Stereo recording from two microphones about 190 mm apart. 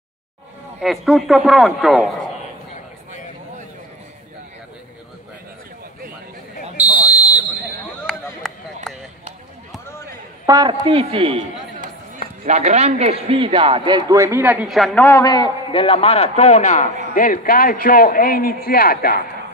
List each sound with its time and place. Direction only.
0.7 s a man's voice: centre (ahead or behind)
6.9 s buzzer: 20° left (ahead or behind)
8.0 s chop: 5° left (ahead or behind)
10.4 s a man's voice: 20° right (ahead or behind)
12.4 s a man's voice: 35° right (ahead or behind); by 15.0 s centre (ahead or behind)
15.0 s a man's voice: 20° left (ahead or behind); by 19.2 s 50° left (ahead or behind)